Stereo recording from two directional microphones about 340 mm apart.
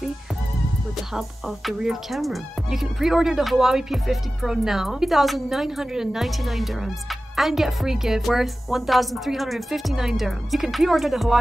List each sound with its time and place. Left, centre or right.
0.9 s speech: centre